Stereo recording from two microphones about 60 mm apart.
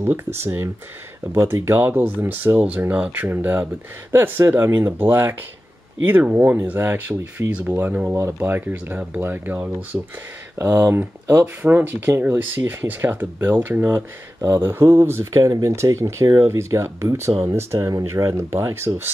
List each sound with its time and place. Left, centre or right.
0.0 s speech: right
10.6 s speech: right
11.4 s speech: right
14.5 s speech: right
17.7 s speech: right